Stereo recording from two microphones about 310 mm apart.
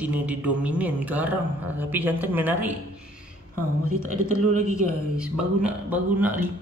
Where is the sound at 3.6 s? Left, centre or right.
Right.